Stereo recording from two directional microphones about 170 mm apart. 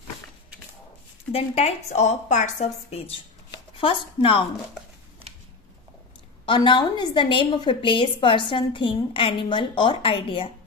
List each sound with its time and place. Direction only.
1.3 s a woman's voice: 40° left (ahead or behind)
6.4 s a woman's voice: 30° left (ahead or behind)